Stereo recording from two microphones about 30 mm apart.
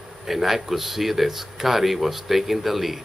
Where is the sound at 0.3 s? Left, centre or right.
Centre.